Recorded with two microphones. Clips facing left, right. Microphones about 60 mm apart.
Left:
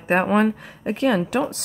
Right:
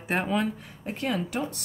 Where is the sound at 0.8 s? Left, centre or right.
Left.